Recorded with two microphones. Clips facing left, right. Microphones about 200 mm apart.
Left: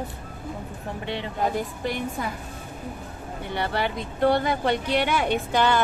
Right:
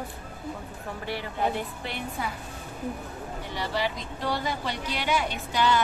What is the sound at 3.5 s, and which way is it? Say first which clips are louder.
A woman's voice: left 3 dB; 60° left (ahead or behind).